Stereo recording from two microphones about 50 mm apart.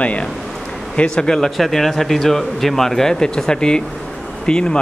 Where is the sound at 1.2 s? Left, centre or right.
Centre.